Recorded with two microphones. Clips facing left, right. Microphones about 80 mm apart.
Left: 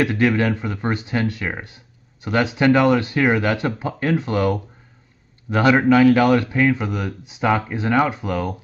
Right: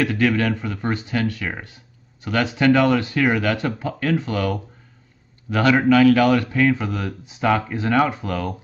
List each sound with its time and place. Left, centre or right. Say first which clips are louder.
0.0 s a man's voice: left 1 dB; left